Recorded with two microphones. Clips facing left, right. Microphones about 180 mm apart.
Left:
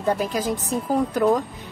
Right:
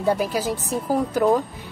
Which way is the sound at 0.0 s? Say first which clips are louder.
Right 1 dB; 5° right (ahead or behind).